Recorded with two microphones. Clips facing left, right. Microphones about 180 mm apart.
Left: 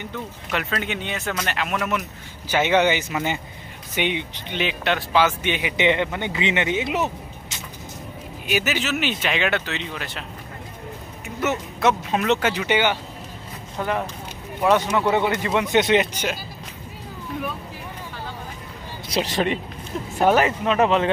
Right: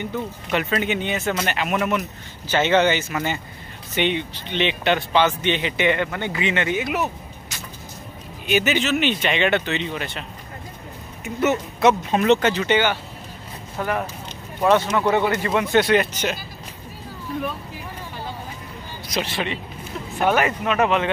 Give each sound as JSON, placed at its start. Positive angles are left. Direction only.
{"t": 0.1, "sound": "speech", "side_deg": -5}
{"t": 2.4, "sound": "speech", "side_deg": 15}
{"t": 8.5, "sound": "speech", "side_deg": 5}
{"t": 11.2, "sound": "speech", "side_deg": 0}
{"t": 19.1, "sound": "speech", "side_deg": 40}